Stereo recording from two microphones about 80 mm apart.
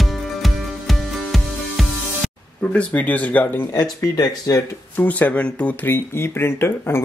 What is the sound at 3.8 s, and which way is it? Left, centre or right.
Speech, left.